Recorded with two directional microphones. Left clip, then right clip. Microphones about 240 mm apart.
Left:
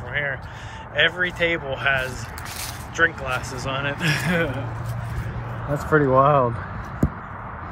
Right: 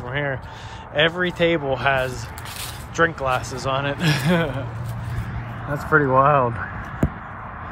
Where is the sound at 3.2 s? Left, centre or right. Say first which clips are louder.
Right 4 dB; centre.